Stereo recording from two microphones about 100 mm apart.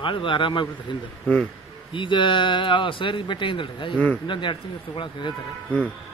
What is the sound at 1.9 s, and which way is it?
Speech, 55° left (ahead or behind).